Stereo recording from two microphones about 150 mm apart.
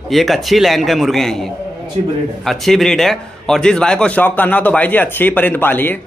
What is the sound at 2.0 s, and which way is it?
Speech, 45° right (ahead or behind).